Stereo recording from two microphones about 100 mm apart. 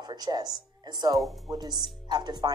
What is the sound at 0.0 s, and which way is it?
Speech, 45° right (ahead or behind).